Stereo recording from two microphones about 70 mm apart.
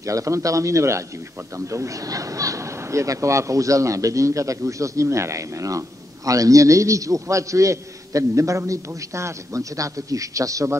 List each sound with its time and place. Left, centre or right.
0.0 s speech: right